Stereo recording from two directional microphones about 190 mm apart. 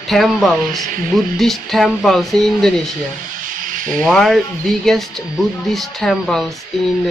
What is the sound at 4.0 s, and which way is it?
Speech, centre (ahead or behind).